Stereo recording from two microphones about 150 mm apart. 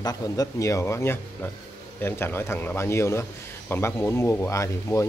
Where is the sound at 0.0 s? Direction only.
25° left (ahead or behind).